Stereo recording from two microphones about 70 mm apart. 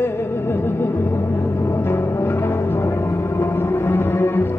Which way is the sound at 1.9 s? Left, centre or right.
Left.